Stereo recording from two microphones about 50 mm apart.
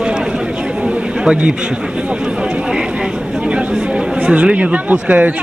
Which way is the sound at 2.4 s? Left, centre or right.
Centre.